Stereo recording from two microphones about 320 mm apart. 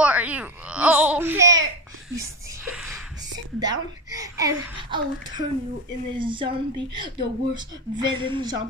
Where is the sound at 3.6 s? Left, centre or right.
Centre.